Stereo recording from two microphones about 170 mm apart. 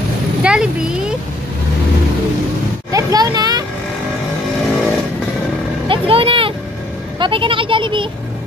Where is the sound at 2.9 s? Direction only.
20° right (ahead or behind).